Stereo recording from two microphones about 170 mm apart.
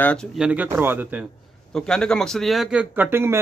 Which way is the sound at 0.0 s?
5° left (ahead or behind).